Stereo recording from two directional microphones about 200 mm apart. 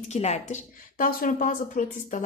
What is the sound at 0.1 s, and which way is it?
A woman's voice, 35° left (ahead or behind).